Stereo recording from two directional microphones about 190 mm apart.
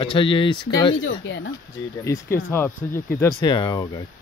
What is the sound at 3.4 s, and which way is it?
Speech, 25° left (ahead or behind).